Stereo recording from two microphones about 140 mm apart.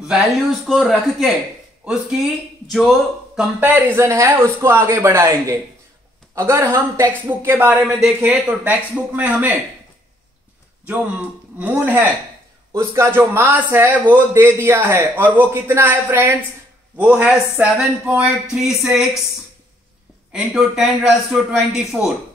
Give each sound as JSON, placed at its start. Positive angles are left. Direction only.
{"t": 0.1, "sound": "a man's voice", "side_deg": 0}
{"t": 3.5, "sound": "a man's voice", "side_deg": -10}
{"t": 10.9, "sound": "a man's voice", "side_deg": -10}
{"t": 20.3, "sound": "a man's voice", "side_deg": -5}